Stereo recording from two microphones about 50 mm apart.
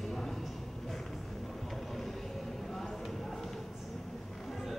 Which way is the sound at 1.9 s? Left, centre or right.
Centre.